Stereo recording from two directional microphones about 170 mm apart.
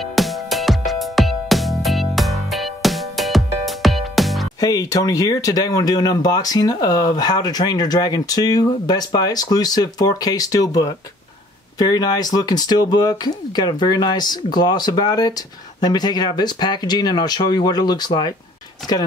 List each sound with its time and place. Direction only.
0.0 s music: centre (ahead or behind)
4.6 s speech: 20° left (ahead or behind)